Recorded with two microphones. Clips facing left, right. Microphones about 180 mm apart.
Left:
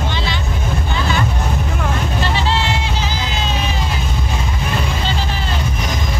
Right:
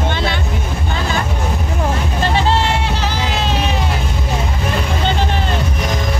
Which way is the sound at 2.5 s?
50° right (ahead or behind).